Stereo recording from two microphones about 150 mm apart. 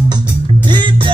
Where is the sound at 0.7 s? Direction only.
30° right (ahead or behind).